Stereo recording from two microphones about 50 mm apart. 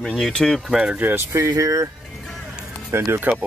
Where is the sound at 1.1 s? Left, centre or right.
Right.